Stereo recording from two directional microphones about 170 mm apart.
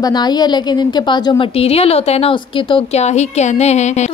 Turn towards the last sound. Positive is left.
turn(degrees=45)  # may be behind; listen again after turning